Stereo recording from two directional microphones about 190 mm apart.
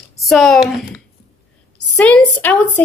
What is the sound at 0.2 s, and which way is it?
Speech, centre (ahead or behind).